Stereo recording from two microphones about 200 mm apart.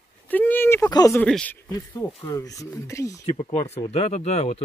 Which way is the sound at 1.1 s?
5° left (ahead or behind).